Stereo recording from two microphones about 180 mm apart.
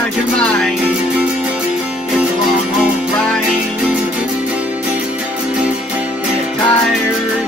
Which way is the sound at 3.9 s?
5° right (ahead or behind).